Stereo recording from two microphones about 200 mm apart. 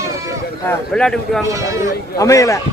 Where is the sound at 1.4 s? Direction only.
15° right (ahead or behind).